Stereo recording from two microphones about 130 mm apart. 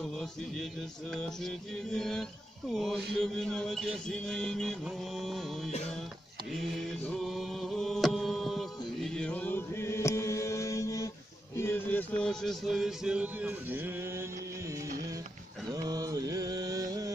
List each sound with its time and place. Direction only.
0.0 s music: centre (ahead or behind)
2.0 s music: 5° left (ahead or behind)
6.5 s mantra: 5° left (ahead or behind); by 11.1 s 25° left (ahead or behind)
11.5 s music: 15° left (ahead or behind); by 14.2 s 15° right (ahead or behind)
15.7 s mantra: 30° right (ahead or behind)